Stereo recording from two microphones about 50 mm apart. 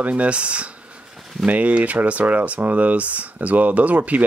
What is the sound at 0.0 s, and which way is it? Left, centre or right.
Speech, right.